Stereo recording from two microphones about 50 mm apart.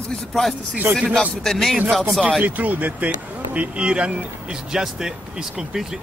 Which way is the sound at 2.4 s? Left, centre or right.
Right.